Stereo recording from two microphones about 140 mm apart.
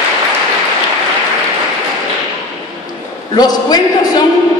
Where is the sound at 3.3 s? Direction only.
25° left (ahead or behind).